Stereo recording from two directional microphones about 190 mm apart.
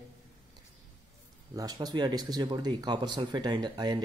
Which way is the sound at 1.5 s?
20° right (ahead or behind).